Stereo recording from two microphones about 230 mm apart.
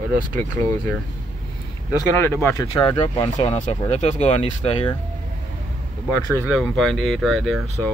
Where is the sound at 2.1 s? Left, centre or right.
Centre.